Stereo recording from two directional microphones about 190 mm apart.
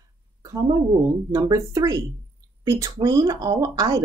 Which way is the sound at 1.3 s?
20° right (ahead or behind).